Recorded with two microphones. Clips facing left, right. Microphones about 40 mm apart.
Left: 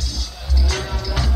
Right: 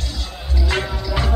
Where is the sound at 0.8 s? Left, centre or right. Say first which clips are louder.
Right 2 dB; centre.